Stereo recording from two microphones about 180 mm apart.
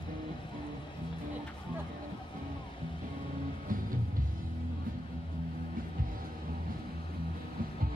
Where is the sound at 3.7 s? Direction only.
50° right (ahead or behind).